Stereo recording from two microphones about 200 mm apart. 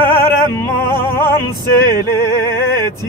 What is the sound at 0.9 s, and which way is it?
Music, 10° left (ahead or behind).